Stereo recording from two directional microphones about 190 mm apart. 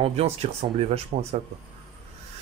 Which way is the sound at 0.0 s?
35° right (ahead or behind).